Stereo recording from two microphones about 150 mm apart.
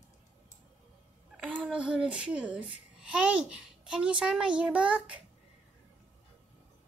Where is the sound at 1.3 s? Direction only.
5° right (ahead or behind).